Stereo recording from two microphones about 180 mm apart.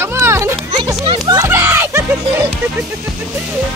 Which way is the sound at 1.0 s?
25° right (ahead or behind).